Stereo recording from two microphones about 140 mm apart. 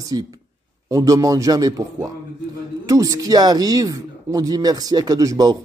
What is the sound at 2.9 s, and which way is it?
A man's voice, 25° right (ahead or behind).